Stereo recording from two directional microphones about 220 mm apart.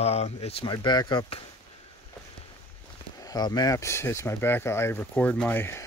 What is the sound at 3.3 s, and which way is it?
Speech, 20° left (ahead or behind).